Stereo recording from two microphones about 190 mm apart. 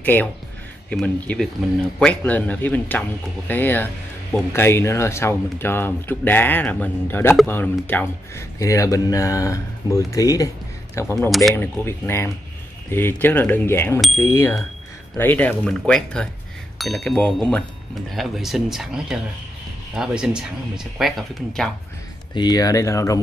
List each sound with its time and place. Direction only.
0.0 s speech: 10° left (ahead or behind)
11.1 s speech: centre (ahead or behind)
11.5 s speech: 10° left (ahead or behind)
22.3 s speech: 20° left (ahead or behind)